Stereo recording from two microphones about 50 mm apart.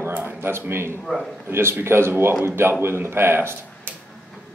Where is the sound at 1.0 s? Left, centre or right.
Centre.